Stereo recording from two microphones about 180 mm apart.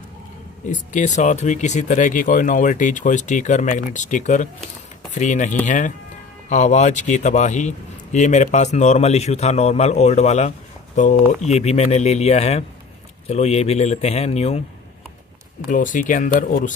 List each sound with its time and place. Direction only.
0.7 s a man's voice: 40° left (ahead or behind)
15.7 s speech: 45° left (ahead or behind)